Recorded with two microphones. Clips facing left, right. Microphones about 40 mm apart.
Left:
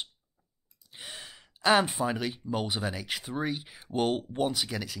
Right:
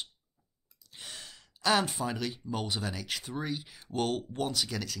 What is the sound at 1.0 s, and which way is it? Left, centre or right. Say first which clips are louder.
Speech: left 2 dB; centre.